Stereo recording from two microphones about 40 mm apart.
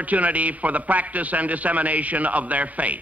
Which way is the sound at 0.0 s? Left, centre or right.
Right.